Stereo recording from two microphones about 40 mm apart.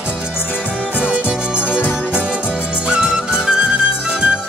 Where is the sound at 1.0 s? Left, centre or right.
Right.